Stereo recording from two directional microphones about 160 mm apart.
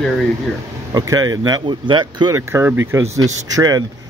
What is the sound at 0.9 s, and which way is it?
Speech, 25° right (ahead or behind).